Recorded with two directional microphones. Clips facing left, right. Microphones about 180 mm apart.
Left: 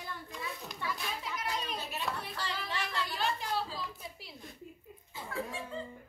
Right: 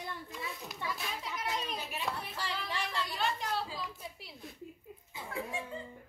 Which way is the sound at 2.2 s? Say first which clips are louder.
Left 1 dB; 10° right (ahead or behind).